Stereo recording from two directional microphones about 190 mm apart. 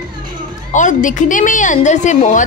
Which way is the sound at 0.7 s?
40° left (ahead or behind).